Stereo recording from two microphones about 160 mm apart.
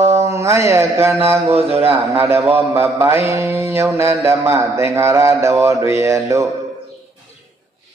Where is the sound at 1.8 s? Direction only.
15° right (ahead or behind).